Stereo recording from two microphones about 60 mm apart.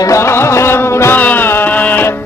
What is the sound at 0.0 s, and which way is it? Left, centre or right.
Music, left.